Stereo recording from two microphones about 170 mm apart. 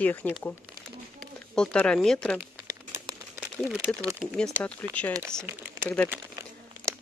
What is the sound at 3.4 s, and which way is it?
Crumpling, 5° right (ahead or behind).